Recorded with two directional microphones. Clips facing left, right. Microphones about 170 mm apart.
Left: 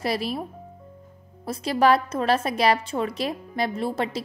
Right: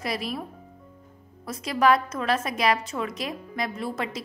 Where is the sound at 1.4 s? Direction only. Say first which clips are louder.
Left 2 dB; 30° left (ahead or behind).